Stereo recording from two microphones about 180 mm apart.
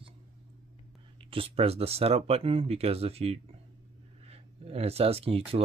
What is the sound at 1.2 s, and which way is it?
Speech, 30° right (ahead or behind).